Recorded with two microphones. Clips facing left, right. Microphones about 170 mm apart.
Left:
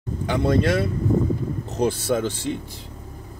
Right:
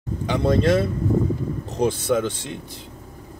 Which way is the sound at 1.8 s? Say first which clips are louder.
Right 1 dB; 10° left (ahead or behind).